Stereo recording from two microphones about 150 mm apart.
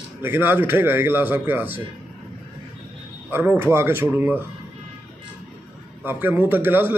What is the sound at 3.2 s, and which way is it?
A man's voice, 15° right (ahead or behind).